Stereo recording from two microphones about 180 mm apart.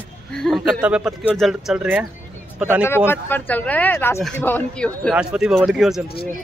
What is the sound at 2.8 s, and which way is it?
Speech, 10° left (ahead or behind).